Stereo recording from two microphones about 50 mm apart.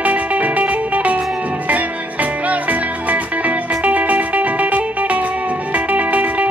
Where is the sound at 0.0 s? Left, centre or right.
Right.